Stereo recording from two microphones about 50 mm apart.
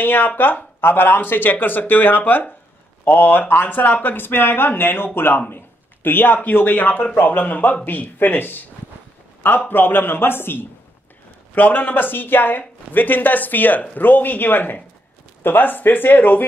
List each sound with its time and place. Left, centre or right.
0.0 s speech: left
9.7 s speech: left
11.5 s speech: left